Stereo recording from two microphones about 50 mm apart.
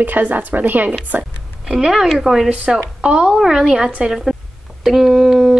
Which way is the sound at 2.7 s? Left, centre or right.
Right.